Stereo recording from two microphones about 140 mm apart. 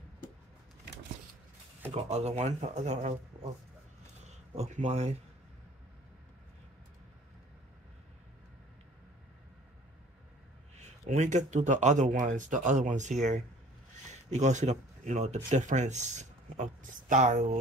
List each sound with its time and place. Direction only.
1.9 s speech: 50° right (ahead or behind)
4.2 s speech: 55° right (ahead or behind)
10.8 s speech: 60° right (ahead or behind)